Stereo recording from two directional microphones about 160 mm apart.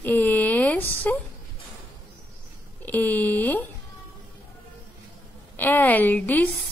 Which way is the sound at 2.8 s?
10° left (ahead or behind).